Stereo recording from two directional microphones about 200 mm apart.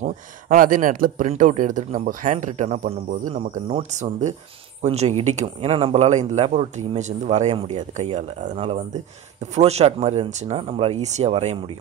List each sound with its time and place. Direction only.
0.0 s speech: 40° right (ahead or behind)